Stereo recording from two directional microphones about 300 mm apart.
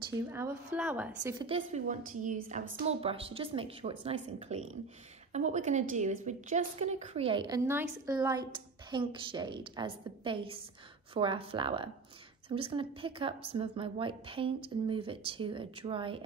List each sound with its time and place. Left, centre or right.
0.3 s a woman's voice: centre